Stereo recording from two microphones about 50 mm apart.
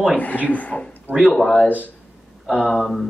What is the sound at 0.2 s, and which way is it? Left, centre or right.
Speech, left.